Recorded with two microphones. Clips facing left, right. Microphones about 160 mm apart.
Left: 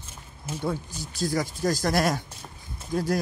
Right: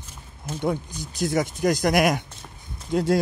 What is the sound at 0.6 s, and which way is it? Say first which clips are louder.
Speech: right 4 dB; 20° right (ahead or behind).